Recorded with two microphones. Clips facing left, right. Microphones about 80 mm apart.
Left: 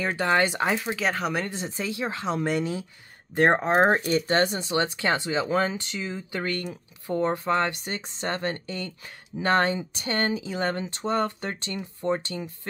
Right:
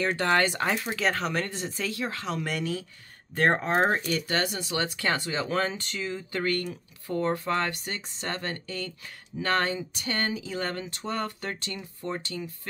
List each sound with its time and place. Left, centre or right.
0.0 s speech: centre
0.7 s speech: centre; by 3.8 s left
3.8 s speech: left